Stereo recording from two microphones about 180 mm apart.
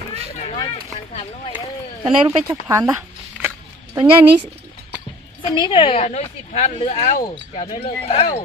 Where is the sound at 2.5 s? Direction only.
15° right (ahead or behind).